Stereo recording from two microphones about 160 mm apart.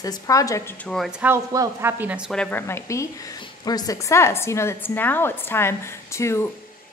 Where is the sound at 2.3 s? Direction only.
10° left (ahead or behind).